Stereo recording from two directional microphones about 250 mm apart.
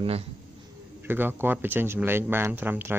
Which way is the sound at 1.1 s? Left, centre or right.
Centre.